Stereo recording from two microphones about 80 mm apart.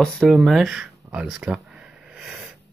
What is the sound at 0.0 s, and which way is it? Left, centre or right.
Speech, centre.